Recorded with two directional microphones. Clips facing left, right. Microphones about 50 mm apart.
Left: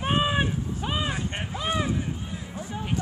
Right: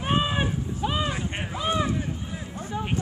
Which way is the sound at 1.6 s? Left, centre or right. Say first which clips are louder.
Right 2 dB; centre.